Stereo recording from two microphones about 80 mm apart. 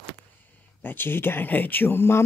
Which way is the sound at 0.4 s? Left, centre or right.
Left.